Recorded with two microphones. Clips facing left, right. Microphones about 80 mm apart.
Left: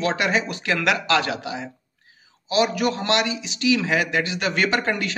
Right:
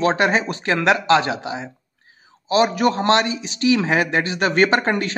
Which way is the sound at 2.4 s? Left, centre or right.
Right.